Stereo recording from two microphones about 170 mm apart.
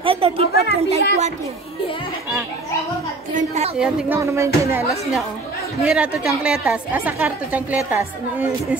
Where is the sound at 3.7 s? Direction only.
10° right (ahead or behind).